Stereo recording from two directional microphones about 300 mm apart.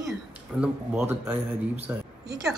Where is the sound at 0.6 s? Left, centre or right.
Centre.